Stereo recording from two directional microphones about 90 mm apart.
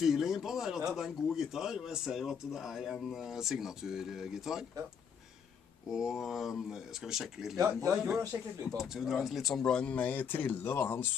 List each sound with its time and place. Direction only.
0.0 s speech: 5° right (ahead or behind)
5.9 s speech: 5° right (ahead or behind)
7.5 s speech: 35° right (ahead or behind)
7.9 s speech: 5° right (ahead or behind); by 11.1 s 25° left (ahead or behind)